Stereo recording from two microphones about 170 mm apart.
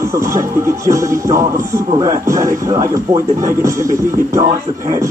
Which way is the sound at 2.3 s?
20° right (ahead or behind).